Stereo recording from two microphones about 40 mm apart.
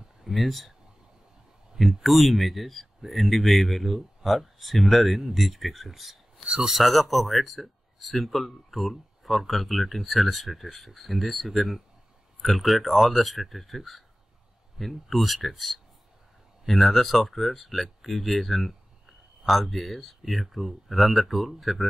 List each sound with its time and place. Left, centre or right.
0.2 s speech: centre
2.0 s speech: centre
6.4 s speech: right
6.7 s speech: centre
18.7 s a sound: centre
20.2 s speech: centre